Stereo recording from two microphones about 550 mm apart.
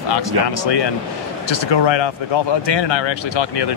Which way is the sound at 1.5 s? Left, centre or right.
Left.